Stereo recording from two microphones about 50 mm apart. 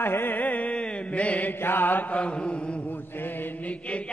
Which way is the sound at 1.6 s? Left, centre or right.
Left.